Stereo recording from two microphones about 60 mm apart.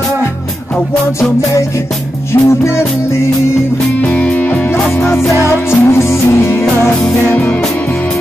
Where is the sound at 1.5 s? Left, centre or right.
Left.